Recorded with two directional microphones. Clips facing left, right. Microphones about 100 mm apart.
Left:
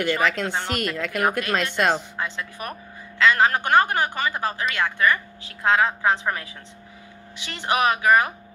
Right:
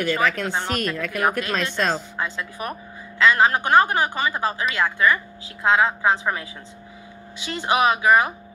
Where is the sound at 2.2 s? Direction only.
35° right (ahead or behind).